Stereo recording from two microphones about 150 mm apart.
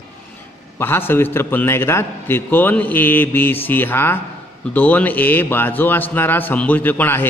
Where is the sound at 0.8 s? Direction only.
15° left (ahead or behind).